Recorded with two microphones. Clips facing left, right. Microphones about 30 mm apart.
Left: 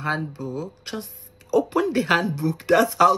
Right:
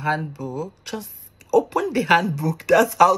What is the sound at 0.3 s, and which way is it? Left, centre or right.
Speech, left.